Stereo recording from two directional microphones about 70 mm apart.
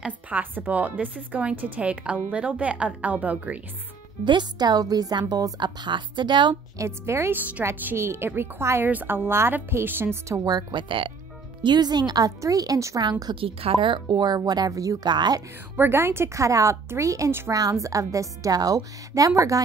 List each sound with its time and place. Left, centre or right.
0.0 s a woman's voice: right
4.2 s a woman's voice: right
5.3 s speech: right
6.8 s speech: right
10.4 s a woman's voice: right
11.6 s a woman's voice: right
13.3 s speech: right
14.7 s a woman's voice: right
15.0 s speech: right
15.7 s a woman's voice: right